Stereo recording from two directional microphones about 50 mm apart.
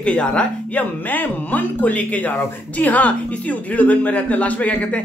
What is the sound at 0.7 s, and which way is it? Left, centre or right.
Speech, left.